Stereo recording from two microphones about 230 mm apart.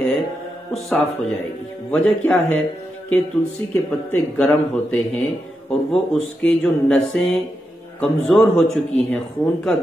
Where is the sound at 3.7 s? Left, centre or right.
Centre.